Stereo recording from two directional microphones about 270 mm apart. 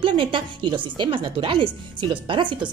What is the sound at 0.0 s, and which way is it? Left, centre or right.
A woman's voice, centre.